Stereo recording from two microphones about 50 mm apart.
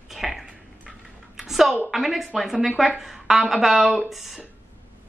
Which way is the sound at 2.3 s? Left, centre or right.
Centre.